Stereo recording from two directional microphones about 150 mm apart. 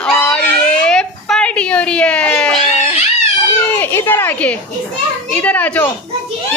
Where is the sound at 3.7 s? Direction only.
15° left (ahead or behind).